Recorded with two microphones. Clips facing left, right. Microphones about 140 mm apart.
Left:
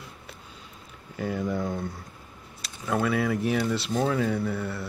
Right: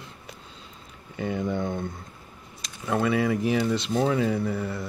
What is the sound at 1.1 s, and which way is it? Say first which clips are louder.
Speech: right 1 dB; centre (ahead or behind).